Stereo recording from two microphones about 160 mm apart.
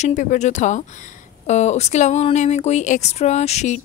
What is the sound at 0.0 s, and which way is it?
Speech, 50° left (ahead or behind).